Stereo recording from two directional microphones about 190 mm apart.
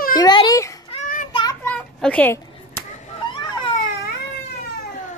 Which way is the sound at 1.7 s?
5° left (ahead or behind).